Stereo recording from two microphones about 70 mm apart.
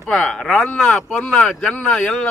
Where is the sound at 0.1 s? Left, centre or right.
Centre.